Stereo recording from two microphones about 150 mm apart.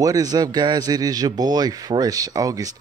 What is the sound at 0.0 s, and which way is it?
Speech, 25° right (ahead or behind).